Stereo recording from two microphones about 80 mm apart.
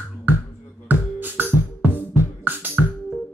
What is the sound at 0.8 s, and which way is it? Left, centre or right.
Music, right.